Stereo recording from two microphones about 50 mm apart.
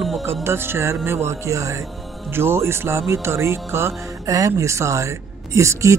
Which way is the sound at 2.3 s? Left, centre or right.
Right.